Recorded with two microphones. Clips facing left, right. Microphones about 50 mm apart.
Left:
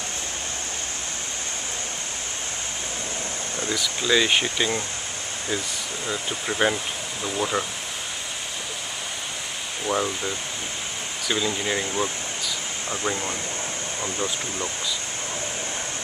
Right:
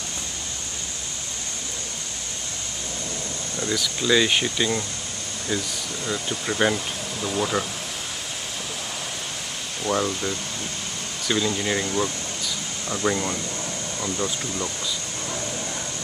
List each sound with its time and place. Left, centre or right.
3.5 s speech: centre
6.0 s speech: centre
9.8 s speech: centre